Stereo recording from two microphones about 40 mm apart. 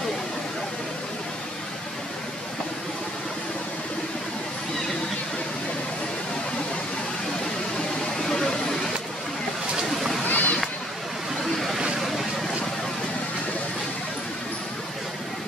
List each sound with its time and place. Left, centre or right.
8.2 s vehicle: centre
9.8 s a sound: centre
10.2 s music: left